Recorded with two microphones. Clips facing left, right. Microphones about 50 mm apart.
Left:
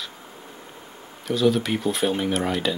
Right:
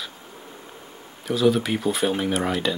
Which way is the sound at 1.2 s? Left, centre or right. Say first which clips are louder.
Right 1 dB; centre.